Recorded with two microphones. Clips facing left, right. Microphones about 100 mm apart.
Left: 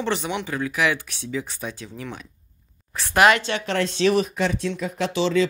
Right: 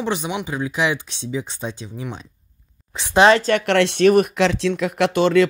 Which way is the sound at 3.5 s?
70° right (ahead or behind).